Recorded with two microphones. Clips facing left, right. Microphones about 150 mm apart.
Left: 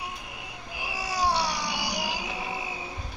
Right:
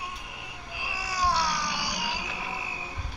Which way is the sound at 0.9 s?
25° left (ahead or behind).